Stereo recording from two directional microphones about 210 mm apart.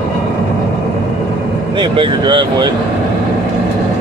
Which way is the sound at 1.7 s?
25° right (ahead or behind).